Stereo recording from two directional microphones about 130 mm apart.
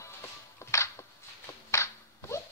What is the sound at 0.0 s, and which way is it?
Music, 20° left (ahead or behind).